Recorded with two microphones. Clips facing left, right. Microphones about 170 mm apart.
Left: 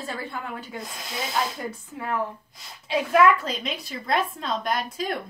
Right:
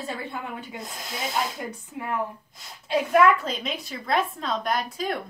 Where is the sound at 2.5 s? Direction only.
Centre (ahead or behind).